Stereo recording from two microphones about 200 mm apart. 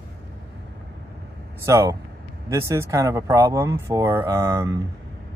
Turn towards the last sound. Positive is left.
turn(degrees=-15)  # may be behind; listen again after turning